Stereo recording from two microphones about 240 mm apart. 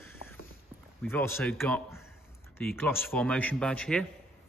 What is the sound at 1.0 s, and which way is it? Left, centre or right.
Speech, centre.